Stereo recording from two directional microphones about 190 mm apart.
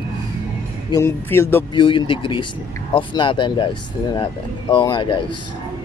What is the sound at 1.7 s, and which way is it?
Speech, 25° left (ahead or behind).